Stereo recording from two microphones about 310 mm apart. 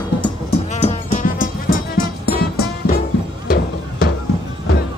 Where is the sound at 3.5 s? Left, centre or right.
Left.